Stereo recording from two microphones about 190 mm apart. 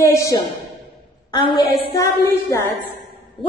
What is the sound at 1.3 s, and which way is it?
Speech, 25° left (ahead or behind).